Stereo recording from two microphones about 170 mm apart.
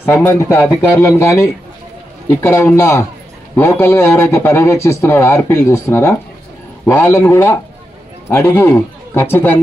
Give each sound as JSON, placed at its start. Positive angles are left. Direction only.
{"t": 0.0, "sound": "speech", "side_deg": 10}